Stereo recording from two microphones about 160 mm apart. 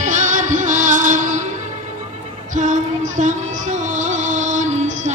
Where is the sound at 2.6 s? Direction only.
50° right (ahead or behind).